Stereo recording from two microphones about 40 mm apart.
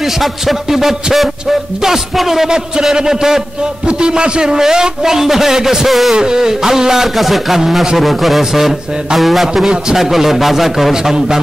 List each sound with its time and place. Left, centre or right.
0.0 s a man's voice: centre
6.1 s a man's voice: centre
8.0 s a man's voice: centre
11.1 s a man's voice: centre